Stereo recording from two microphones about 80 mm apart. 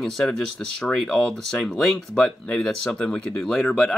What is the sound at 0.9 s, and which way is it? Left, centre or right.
Speech, centre.